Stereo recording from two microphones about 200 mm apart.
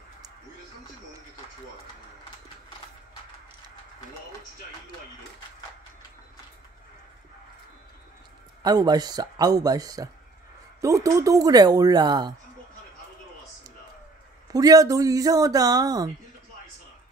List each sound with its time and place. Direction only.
8.6 s speech: 20° right (ahead or behind)
14.5 s speech: 20° right (ahead or behind)